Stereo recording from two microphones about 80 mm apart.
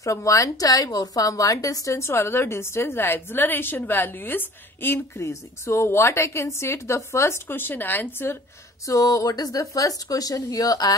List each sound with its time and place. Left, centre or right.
0.0 s a woman's voice: left
5.2 s a woman's voice: left
7.4 s speech: left
8.8 s speech: left